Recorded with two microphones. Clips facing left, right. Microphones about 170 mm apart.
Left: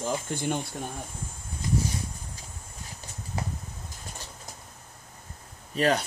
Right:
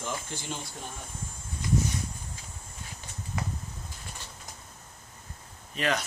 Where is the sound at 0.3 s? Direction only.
55° left (ahead or behind).